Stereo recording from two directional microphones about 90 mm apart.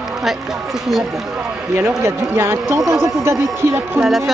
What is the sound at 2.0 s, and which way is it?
Speech, 25° right (ahead or behind).